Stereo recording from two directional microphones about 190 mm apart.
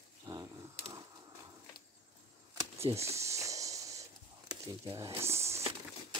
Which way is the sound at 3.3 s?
15° right (ahead or behind).